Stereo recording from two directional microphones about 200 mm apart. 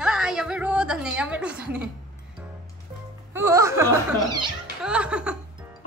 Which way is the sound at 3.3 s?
15° right (ahead or behind).